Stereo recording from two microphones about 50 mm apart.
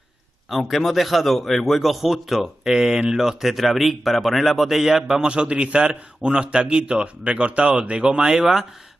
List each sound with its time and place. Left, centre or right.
0.5 s a man's voice: centre
5.2 s a man's voice: right